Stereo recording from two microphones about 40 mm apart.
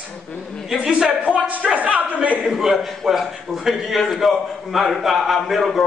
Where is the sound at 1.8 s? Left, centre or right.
Right.